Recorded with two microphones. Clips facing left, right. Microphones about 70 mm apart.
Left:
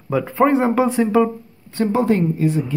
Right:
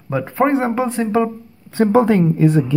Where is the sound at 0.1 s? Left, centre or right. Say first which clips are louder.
Left 1 dB; centre.